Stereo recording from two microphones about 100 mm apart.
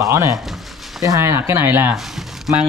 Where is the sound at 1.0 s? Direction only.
35° right (ahead or behind).